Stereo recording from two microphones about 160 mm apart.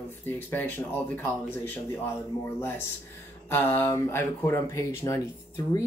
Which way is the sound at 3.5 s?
15° left (ahead or behind).